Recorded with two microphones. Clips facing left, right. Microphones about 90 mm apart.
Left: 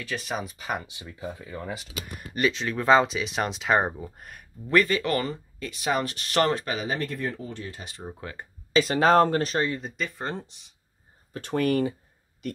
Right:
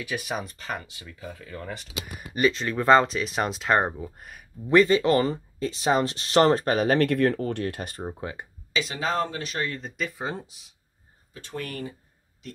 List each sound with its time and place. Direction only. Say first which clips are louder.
0.0 s speech: right 1 dB; 10° right (ahead or behind); by 1.9 s 10° left (ahead or behind)
2.0 s speech: right 2 dB; 5° right (ahead or behind)
4.6 s speech: right 4 dB; 20° right (ahead or behind)
6.6 s speech: right 7 dB; 45° right (ahead or behind)
6.9 s speech: right 9 dB; 75° right (ahead or behind); by 8.0 s 55° right (ahead or behind)
8.1 s speech: right 4 dB; 20° right (ahead or behind)
8.7 s speech: left 8 dB; 45° left (ahead or behind)
9.8 s speech: right 1 dB; centre (ahead or behind)
11.3 s speech: left 10 dB; 65° left (ahead or behind)